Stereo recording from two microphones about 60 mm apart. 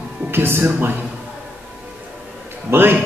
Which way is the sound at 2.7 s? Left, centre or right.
Right.